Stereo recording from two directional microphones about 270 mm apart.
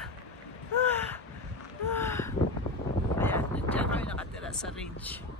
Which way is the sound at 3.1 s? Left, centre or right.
Centre.